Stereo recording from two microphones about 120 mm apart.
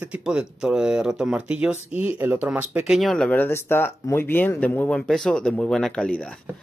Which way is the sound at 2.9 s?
Centre (ahead or behind).